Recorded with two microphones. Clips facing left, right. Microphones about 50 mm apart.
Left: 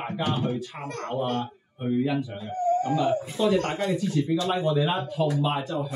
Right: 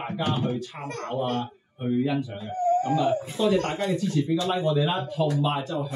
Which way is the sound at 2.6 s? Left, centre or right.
Right.